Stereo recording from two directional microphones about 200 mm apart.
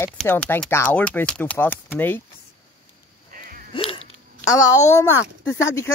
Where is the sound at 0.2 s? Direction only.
10° left (ahead or behind).